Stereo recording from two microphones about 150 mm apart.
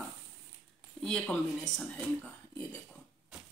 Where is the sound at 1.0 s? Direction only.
5° left (ahead or behind).